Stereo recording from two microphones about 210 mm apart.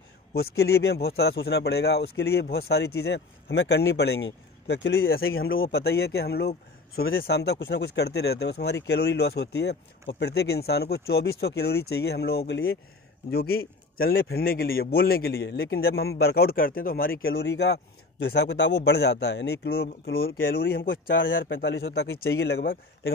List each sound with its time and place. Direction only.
0.3 s speech: 50° left (ahead or behind)
5.2 s speech: 75° left (ahead or behind)
5.8 s speech: 50° left (ahead or behind)
7.0 s speech: 65° left (ahead or behind)
13.3 s speech: 45° left (ahead or behind)
21.1 s a man's voice: 60° left (ahead or behind)